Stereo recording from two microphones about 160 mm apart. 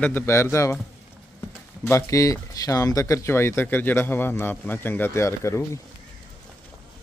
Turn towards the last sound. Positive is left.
turn(degrees=20)  # may be behind; listen again after turning